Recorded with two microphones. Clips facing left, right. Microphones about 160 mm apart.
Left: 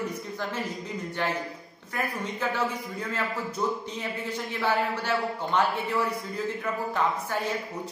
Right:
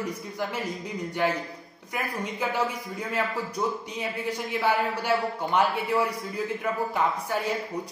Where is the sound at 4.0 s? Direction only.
10° right (ahead or behind).